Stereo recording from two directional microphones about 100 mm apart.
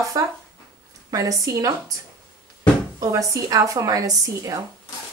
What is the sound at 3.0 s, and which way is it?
Speech, 35° right (ahead or behind).